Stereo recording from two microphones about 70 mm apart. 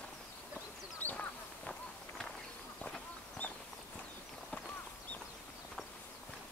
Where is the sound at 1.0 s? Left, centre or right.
Left.